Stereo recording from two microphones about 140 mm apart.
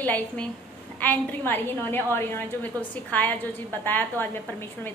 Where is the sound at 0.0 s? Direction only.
10° left (ahead or behind).